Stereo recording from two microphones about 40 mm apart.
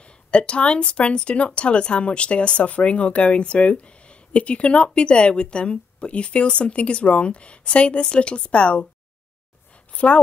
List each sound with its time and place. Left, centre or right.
0.3 s speech: left
9.9 s a woman's voice: left